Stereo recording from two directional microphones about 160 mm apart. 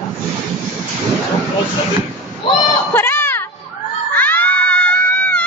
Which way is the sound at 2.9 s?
15° left (ahead or behind).